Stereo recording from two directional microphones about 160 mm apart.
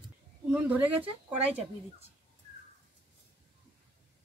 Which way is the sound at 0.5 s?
10° right (ahead or behind).